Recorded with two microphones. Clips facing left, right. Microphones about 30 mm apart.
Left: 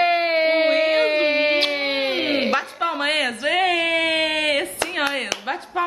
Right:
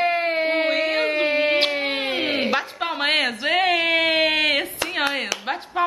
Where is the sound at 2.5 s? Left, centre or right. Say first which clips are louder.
Left 2 dB; centre.